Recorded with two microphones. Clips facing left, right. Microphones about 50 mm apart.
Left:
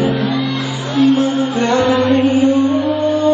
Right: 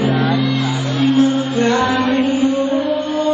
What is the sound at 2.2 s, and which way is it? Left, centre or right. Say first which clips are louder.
Music: left 3 dB; left.